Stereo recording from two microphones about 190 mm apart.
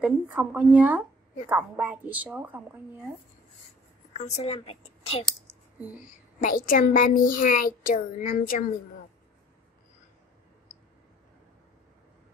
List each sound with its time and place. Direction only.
0.0 s a woman's voice: 5° right (ahead or behind)
4.1 s a woman's voice: 35° left (ahead or behind)
6.4 s a child's voice: 45° left (ahead or behind)